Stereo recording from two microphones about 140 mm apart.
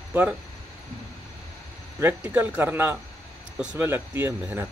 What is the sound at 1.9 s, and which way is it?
Speech, 20° right (ahead or behind).